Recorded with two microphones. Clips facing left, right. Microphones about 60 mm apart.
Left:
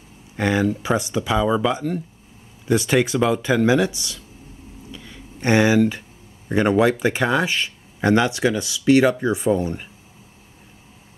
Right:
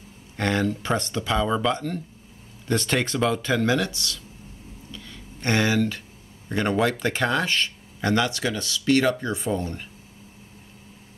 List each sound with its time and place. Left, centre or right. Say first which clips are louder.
0.4 s speech: left 4 dB; centre
4.9 s a sound: even; centre
6.5 s speech: left 6 dB; centre